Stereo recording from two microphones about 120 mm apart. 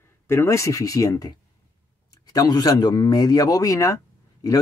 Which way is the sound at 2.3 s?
30° left (ahead or behind).